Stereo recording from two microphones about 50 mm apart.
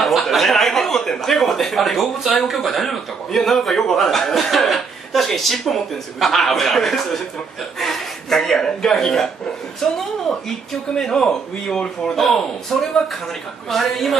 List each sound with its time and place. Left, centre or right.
0.0 s speech: centre
11.0 s a man's voice: centre